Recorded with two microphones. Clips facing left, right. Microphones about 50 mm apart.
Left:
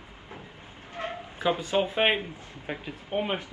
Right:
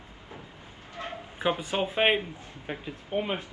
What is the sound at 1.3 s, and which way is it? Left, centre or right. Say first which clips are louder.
Speech: left 2 dB; right.